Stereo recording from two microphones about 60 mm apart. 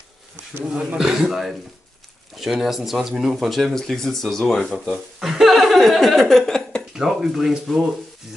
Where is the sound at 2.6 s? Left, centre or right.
Centre.